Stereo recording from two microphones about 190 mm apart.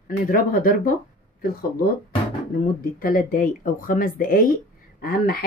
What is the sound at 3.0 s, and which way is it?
Speech, 45° left (ahead or behind).